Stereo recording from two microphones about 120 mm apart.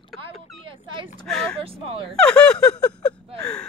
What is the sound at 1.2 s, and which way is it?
Vehicle, 5° left (ahead or behind).